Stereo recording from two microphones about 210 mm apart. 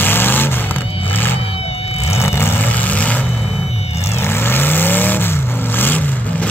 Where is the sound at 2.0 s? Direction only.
10° left (ahead or behind).